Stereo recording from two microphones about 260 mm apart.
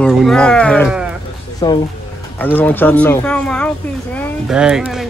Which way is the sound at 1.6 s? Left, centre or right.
Centre.